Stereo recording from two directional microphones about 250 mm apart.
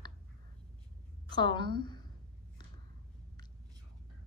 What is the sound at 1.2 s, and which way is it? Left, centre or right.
Speech, centre.